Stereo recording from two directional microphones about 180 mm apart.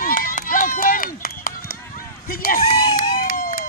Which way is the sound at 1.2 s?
55° left (ahead or behind).